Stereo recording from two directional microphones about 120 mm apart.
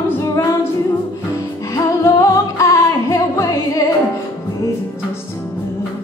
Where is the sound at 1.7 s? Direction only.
30° left (ahead or behind).